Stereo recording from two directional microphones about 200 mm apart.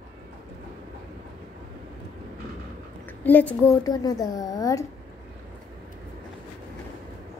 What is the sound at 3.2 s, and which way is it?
A woman's voice, 10° left (ahead or behind).